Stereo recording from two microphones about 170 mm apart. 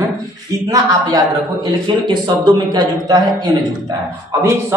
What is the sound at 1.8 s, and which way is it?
A man's voice, 25° right (ahead or behind).